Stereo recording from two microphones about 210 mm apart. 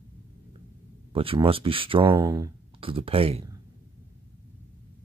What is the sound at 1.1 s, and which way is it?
Speech, 25° right (ahead or behind).